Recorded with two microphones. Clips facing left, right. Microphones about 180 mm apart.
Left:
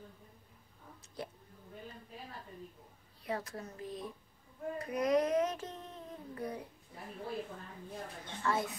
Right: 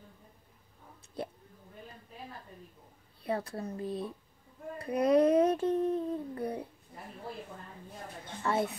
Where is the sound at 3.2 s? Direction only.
30° right (ahead or behind).